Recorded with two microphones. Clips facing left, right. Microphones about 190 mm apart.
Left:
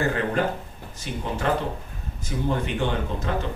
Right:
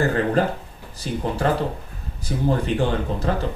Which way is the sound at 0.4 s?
35° right (ahead or behind).